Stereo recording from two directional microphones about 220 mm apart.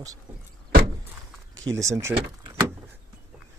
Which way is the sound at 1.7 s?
15° right (ahead or behind).